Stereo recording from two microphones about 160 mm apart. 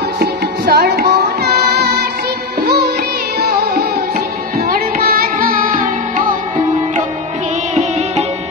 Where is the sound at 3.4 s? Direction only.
75° right (ahead or behind).